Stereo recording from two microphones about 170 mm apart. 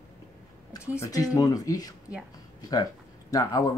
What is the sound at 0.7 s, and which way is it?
Speech, 15° left (ahead or behind).